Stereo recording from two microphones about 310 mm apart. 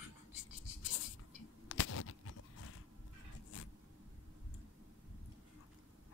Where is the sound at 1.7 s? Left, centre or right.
Left.